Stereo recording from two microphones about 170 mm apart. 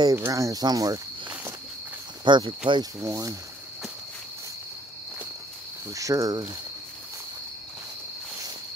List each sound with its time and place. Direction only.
0.0 s speech: 15° right (ahead or behind)
2.2 s speech: 25° right (ahead or behind)
5.9 s speech: 20° right (ahead or behind)